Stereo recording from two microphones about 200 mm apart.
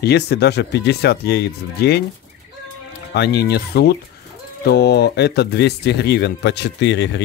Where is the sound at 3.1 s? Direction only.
55° left (ahead or behind).